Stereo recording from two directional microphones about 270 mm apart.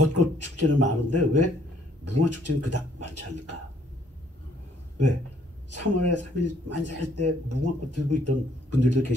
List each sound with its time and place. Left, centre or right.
0.0 s a man's voice: right
5.7 s speech: right